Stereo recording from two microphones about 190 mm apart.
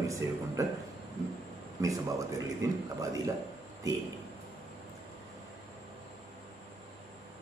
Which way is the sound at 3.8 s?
15° right (ahead or behind).